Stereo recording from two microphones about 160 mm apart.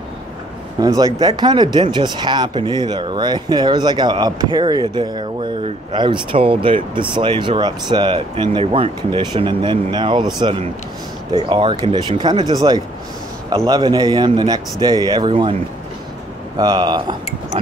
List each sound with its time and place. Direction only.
0.7 s speech: 20° right (ahead or behind)
16.5 s speech: 25° right (ahead or behind)